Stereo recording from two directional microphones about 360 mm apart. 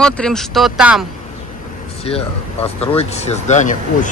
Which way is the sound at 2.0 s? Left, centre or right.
Centre.